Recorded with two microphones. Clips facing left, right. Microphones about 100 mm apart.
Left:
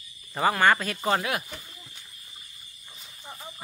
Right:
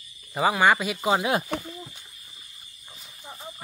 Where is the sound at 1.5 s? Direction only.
70° right (ahead or behind).